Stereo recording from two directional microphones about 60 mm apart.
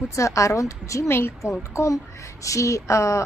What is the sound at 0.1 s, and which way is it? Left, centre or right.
Speech, left.